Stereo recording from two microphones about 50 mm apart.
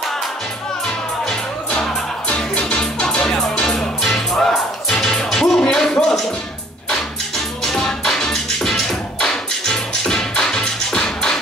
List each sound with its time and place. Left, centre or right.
0.8 s music: centre